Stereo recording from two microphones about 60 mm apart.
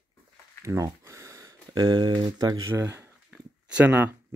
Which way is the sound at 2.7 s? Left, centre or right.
Right.